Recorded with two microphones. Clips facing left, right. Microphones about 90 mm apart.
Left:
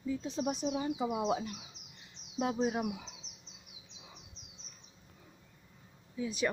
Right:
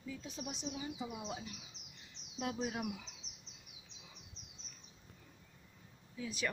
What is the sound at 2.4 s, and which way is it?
Speech, 30° left (ahead or behind).